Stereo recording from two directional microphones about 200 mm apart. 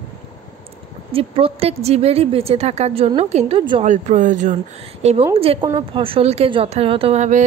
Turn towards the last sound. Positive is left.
turn(degrees=-35)  # may be behind; listen again after turning